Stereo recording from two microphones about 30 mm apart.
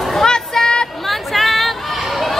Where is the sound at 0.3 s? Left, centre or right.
Left.